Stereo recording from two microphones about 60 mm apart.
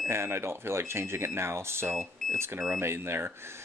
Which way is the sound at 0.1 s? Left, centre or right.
Right.